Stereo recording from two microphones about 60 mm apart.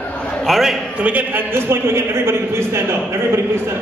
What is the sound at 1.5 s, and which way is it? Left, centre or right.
A man's voice, right.